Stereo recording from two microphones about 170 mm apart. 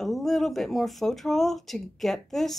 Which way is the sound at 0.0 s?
Centre (ahead or behind).